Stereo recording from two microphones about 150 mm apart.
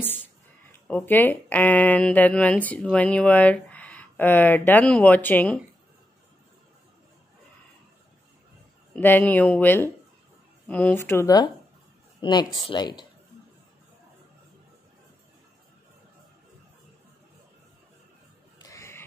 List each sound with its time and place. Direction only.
0.0 s speech: 15° left (ahead or behind)
8.9 s speech: 10° left (ahead or behind); by 13.0 s 30° left (ahead or behind)
18.6 s a sound: 20° left (ahead or behind)